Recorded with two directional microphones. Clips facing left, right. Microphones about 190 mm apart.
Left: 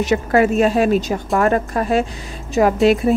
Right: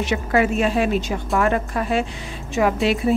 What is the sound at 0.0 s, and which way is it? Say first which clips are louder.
A woman's voice: left 4 dB; 40° left (ahead or behind).